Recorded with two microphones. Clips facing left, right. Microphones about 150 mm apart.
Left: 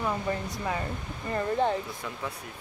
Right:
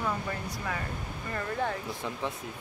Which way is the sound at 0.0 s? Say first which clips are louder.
Left 3 dB; 25° left (ahead or behind).